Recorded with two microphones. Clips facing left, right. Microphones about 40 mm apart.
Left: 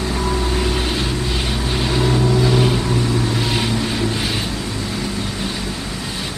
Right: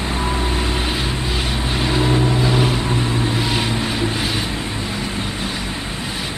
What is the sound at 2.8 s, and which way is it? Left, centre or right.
Vehicle, right.